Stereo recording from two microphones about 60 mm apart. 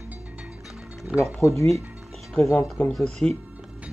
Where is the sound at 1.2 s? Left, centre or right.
Left.